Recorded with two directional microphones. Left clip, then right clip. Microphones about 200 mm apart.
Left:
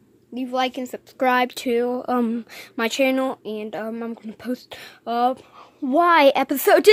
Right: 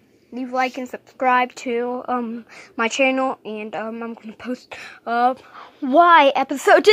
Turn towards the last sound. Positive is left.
turn(degrees=20)  # may be behind; listen again after turning